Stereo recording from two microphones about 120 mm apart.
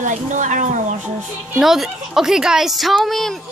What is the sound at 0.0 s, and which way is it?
Speech, 90° right.